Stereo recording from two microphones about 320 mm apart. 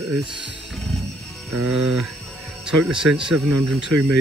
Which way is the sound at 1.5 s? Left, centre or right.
Right.